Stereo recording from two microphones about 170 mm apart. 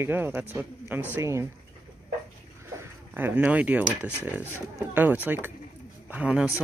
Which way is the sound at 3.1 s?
10° right (ahead or behind).